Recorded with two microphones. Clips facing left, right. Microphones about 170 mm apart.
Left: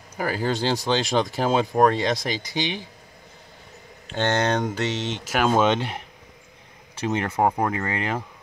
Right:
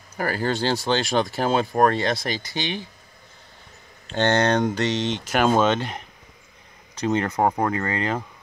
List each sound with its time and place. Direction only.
0.2 s speech: 15° left (ahead or behind)
4.1 s speech: 10° left (ahead or behind)